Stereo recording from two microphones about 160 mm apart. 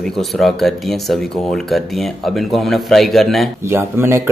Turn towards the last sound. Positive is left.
turn(degrees=-15)  # may be behind; listen again after turning